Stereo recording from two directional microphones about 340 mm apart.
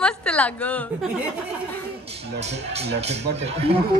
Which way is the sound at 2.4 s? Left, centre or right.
Centre.